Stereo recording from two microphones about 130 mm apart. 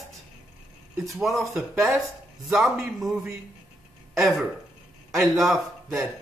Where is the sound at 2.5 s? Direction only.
Centre (ahead or behind).